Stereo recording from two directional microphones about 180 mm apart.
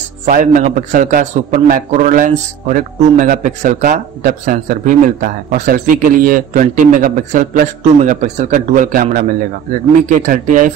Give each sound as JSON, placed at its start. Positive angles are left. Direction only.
{"t": 0.2, "sound": "a man's voice", "side_deg": -45}